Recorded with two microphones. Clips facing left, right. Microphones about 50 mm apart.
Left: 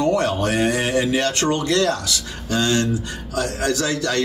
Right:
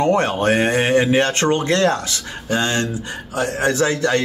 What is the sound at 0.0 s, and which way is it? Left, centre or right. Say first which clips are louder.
Speech: right 2 dB; right.